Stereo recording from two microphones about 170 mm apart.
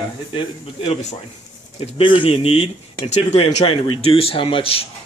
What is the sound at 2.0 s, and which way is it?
Speech, 30° left (ahead or behind).